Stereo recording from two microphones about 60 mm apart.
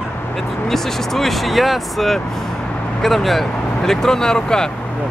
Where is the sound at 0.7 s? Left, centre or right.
Centre.